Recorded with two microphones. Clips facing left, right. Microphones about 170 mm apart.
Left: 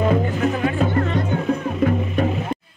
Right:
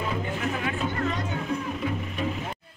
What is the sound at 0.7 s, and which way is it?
Music, 55° left (ahead or behind).